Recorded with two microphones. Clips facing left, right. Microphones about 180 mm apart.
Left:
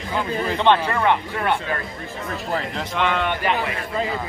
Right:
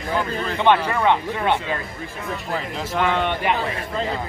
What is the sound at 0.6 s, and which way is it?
Speech, 10° right (ahead or behind).